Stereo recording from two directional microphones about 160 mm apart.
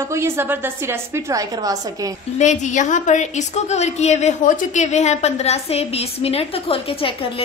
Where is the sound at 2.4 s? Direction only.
50° left (ahead or behind).